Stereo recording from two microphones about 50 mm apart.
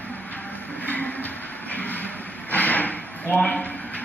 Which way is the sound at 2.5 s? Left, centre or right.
Left.